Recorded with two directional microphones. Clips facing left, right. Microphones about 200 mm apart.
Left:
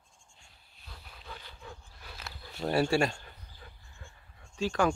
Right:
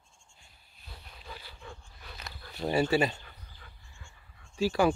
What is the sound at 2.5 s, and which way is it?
Speech, centre (ahead or behind).